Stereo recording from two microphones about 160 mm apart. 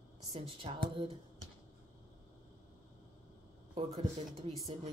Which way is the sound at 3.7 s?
40° right (ahead or behind).